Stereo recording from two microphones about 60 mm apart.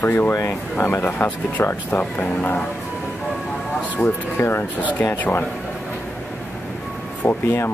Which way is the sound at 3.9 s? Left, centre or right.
Left.